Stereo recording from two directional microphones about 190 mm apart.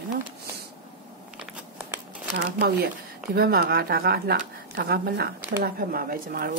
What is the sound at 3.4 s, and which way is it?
Speech, 55° right (ahead or behind).